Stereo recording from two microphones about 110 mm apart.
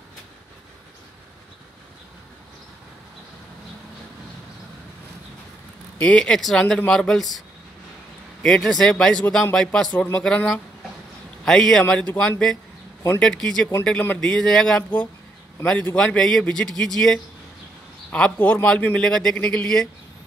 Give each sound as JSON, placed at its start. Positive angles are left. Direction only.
{"t": 5.9, "sound": "a man's voice", "side_deg": 10}
{"t": 14.8, "sound": "a man's voice", "side_deg": 15}